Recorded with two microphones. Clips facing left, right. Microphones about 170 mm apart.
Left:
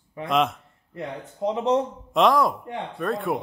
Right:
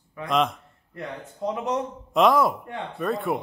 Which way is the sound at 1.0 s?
25° left (ahead or behind).